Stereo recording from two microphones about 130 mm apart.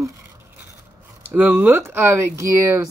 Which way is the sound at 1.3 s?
15° right (ahead or behind).